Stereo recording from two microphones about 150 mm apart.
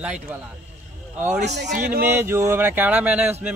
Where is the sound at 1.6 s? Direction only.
60° right (ahead or behind).